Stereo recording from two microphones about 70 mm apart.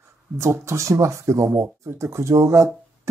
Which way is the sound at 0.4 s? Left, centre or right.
Right.